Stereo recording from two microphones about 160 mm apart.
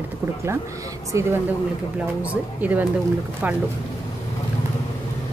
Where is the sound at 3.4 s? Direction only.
10° right (ahead or behind).